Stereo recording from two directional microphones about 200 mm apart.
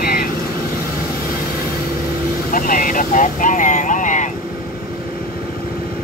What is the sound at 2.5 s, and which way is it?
Vehicle, 45° left (ahead or behind).